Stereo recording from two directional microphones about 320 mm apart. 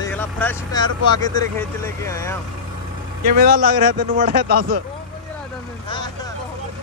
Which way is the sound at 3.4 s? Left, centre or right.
Right.